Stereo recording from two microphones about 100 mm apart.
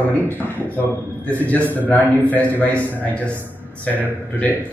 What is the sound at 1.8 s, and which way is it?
A man's voice, 15° left (ahead or behind).